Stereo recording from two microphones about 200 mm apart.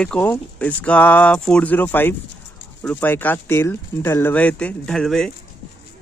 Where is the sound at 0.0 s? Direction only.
5° left (ahead or behind).